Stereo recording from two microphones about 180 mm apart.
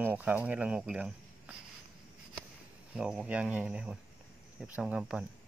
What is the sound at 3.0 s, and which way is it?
Speech, 5° right (ahead or behind).